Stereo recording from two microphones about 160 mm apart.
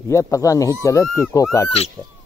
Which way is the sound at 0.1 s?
20° left (ahead or behind).